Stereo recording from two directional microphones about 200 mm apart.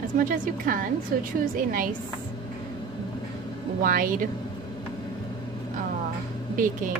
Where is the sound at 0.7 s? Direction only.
45° right (ahead or behind).